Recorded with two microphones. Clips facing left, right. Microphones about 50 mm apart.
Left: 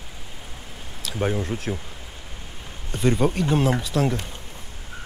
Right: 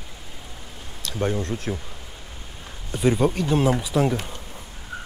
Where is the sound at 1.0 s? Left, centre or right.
Centre.